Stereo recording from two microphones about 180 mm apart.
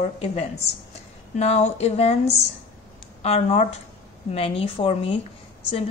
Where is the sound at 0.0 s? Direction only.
40° left (ahead or behind).